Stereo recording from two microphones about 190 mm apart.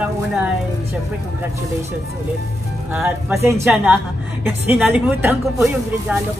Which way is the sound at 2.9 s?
10° right (ahead or behind).